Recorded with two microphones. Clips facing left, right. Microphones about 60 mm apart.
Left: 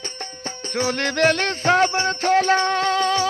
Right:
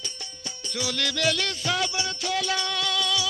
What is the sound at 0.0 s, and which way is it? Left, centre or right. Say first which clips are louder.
Music: left 7 dB; left.